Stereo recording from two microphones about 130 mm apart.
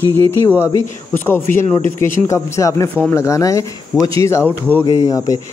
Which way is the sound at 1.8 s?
20° left (ahead or behind).